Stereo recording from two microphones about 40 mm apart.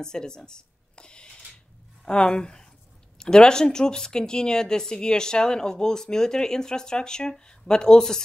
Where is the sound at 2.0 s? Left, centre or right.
Left.